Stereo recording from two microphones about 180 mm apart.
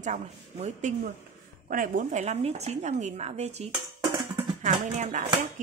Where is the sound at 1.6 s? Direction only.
50° right (ahead or behind).